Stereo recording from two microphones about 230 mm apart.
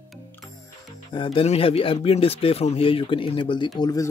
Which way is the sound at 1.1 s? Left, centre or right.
Left.